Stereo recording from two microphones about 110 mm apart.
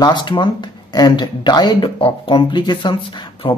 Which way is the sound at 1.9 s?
55° left (ahead or behind).